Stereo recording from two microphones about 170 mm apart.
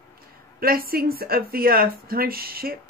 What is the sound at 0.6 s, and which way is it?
Speech, 60° right (ahead or behind).